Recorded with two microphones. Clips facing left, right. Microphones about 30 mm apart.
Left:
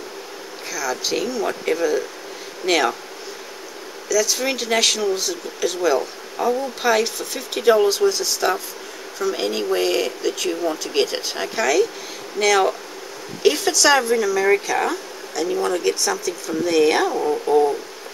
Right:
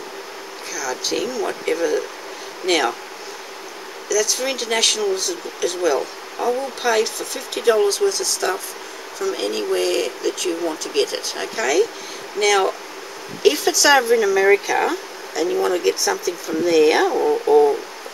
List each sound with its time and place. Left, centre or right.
0.7 s speech: centre
4.1 s speech: centre